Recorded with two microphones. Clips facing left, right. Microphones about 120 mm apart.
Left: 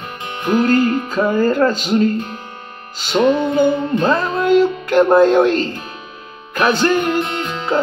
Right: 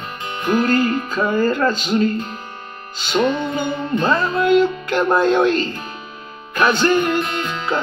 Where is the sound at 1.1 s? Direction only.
45° left (ahead or behind).